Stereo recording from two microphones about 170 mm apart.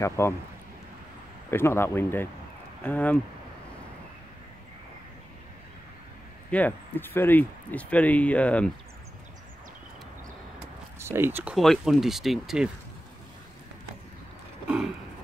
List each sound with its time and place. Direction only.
0.0 s speech: 15° left (ahead or behind)
1.5 s speech: 15° left (ahead or behind)
6.5 s speech: 10° left (ahead or behind)
11.0 s speech: 15° right (ahead or behind)
11.5 s speech: centre (ahead or behind)